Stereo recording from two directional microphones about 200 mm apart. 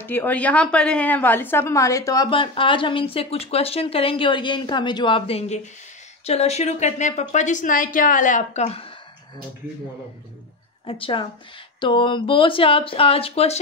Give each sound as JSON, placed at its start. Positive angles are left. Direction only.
{"t": 0.0, "sound": "a woman's voice", "side_deg": 10}
{"t": 10.9, "sound": "a woman's voice", "side_deg": 25}